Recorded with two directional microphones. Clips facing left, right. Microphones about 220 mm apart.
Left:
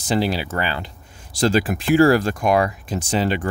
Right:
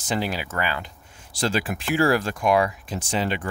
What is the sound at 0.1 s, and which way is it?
Speech, 30° left (ahead or behind).